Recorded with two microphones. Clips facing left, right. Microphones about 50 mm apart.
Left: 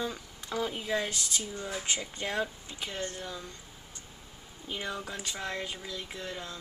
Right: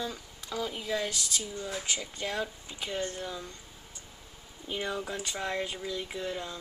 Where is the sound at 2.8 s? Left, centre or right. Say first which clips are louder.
Right 3 dB; centre.